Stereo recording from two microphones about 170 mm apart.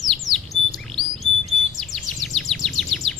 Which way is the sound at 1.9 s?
Centre (ahead or behind).